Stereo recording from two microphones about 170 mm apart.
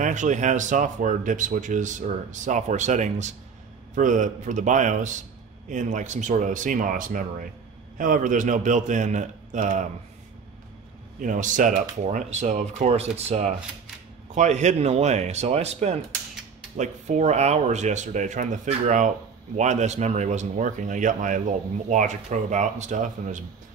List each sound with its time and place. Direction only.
0.0 s speech: 45° right (ahead or behind)
11.1 s speech: 50° right (ahead or behind)